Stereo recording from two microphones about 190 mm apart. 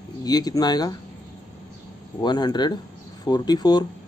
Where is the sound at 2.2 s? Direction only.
20° left (ahead or behind).